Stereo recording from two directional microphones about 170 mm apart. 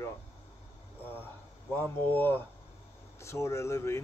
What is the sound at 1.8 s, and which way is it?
Speech, 10° left (ahead or behind).